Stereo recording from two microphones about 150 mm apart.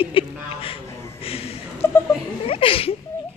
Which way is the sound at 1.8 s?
15° left (ahead or behind).